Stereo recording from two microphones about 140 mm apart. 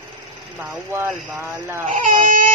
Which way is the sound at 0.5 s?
15° right (ahead or behind).